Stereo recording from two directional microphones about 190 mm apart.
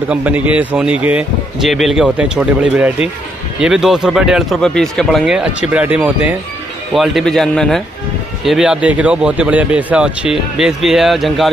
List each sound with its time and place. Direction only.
0.1 s speech: 10° right (ahead or behind)